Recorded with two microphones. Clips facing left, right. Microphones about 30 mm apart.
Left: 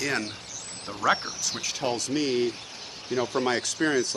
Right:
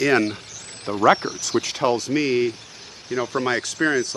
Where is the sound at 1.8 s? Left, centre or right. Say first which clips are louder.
Right 5 dB; centre.